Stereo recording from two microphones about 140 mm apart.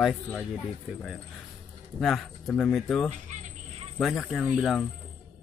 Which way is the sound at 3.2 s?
60° right (ahead or behind).